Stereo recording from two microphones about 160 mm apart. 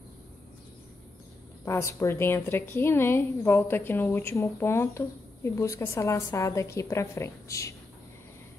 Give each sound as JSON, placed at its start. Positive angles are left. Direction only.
{"t": 1.6, "sound": "a woman's voice", "side_deg": 15}